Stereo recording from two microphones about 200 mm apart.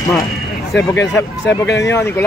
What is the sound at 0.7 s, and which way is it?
Speech, 60° left (ahead or behind).